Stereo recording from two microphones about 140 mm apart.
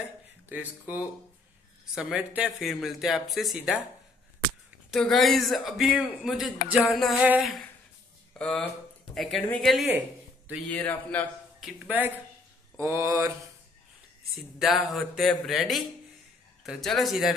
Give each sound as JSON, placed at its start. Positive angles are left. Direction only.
{"t": 0.5, "sound": "speech", "side_deg": -15}
{"t": 4.9, "sound": "speech", "side_deg": 0}
{"t": 8.4, "sound": "a man's voice", "side_deg": 5}
{"t": 11.6, "sound": "speech", "side_deg": -10}
{"t": 12.7, "sound": "mantra", "side_deg": -20}
{"t": 14.6, "sound": "speech", "side_deg": 0}